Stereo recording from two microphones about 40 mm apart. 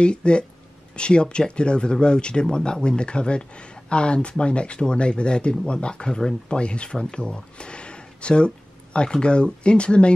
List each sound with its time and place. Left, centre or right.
0.0 s speech: left